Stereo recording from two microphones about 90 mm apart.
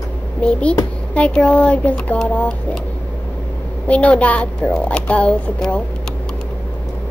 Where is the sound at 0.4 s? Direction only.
15° left (ahead or behind).